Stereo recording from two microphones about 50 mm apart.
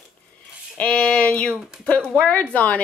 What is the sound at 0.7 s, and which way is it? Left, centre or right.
A woman's voice, left.